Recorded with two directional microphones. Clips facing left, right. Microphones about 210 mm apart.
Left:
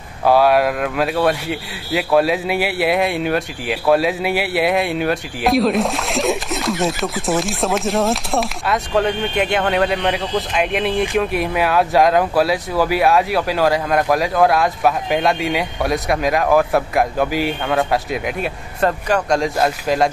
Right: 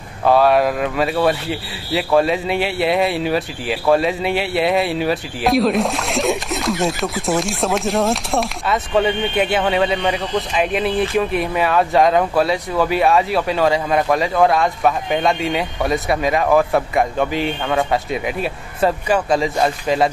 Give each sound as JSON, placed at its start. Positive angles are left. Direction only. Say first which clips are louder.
{"t": 0.2, "sound": "speech", "louder": "even", "side_deg": 5}